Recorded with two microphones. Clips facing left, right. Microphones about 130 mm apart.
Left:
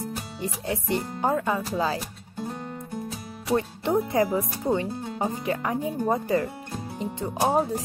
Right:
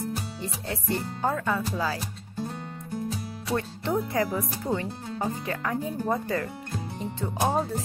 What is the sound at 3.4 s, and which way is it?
Speech, 15° left (ahead or behind).